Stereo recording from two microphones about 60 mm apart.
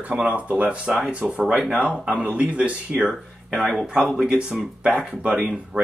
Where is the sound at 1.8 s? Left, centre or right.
Left.